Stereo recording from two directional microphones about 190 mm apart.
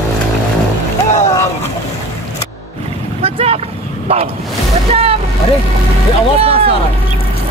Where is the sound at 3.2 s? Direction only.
30° right (ahead or behind).